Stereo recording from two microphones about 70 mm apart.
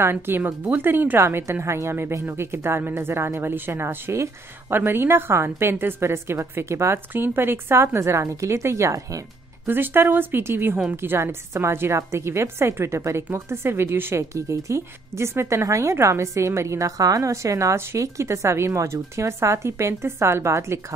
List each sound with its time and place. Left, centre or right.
0.0 s a woman's voice: right
9.7 s a woman's voice: right